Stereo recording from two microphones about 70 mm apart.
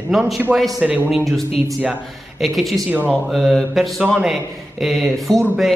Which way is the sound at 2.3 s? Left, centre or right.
Centre.